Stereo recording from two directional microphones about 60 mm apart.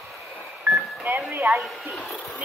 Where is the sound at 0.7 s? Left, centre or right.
Right.